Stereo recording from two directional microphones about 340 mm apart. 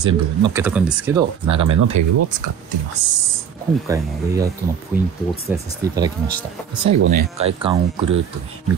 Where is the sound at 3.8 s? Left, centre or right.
Centre.